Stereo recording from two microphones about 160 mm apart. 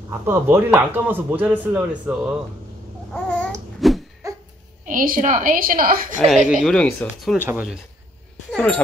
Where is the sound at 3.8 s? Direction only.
Centre (ahead or behind).